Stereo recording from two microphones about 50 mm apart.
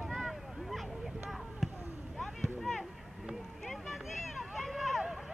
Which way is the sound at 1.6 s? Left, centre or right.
Centre.